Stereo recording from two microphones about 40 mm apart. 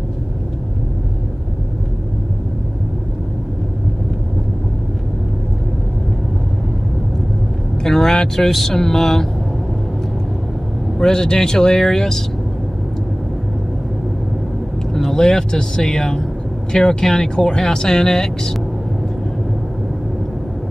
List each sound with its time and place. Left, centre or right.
7.8 s vehicle: centre
8.4 s speech: centre
11.0 s speech: centre
14.9 s speech: centre